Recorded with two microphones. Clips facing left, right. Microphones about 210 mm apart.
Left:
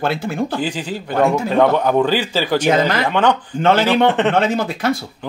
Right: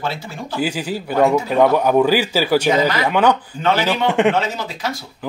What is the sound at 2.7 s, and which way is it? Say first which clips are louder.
Speech: left 1 dB; 55° left (ahead or behind).